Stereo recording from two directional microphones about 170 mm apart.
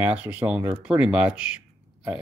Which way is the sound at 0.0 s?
10° right (ahead or behind).